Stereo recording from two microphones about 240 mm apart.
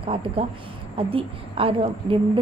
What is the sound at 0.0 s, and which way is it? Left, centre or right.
A woman's voice, right.